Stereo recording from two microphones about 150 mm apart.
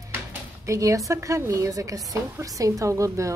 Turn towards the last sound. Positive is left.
turn(degrees=-20)  # may be behind; listen again after turning